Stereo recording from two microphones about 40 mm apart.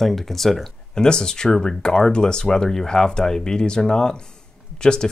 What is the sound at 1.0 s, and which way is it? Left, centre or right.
Speech, centre.